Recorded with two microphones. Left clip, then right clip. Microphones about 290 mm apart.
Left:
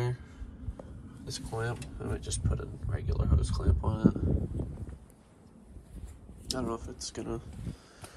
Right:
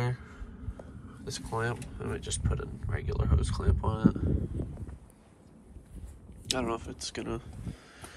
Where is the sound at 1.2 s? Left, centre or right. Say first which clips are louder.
Right 3 dB; centre.